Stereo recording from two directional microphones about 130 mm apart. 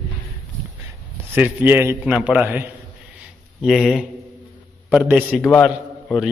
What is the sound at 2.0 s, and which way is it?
Speech, 5° right (ahead or behind).